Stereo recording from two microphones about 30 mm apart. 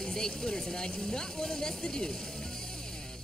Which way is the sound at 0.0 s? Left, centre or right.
Left.